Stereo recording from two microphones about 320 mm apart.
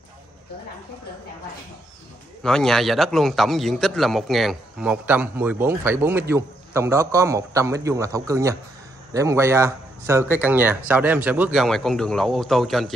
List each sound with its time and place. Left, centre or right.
2.4 s a man's voice: centre